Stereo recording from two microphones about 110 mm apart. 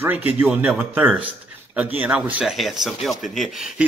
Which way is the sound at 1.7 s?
15° right (ahead or behind).